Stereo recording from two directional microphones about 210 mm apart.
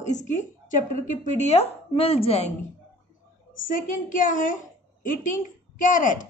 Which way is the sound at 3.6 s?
40° left (ahead or behind).